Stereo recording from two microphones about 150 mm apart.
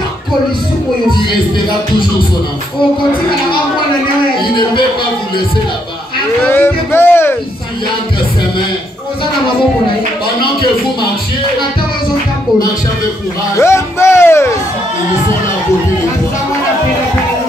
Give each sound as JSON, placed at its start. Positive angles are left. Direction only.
{"t": 4.4, "sound": "speech", "side_deg": 35}
{"t": 6.4, "sound": "music", "side_deg": 15}
{"t": 13.6, "sound": "speech", "side_deg": 20}